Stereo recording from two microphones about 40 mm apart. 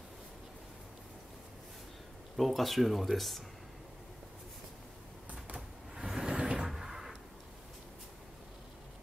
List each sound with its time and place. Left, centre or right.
2.3 s speech: centre
5.9 s vehicle: centre
6.6 s a sound: centre